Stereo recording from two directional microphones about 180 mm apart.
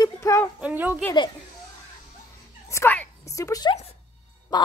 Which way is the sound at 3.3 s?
20° left (ahead or behind).